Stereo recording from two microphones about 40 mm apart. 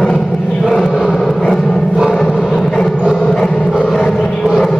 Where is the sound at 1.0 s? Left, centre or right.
Centre.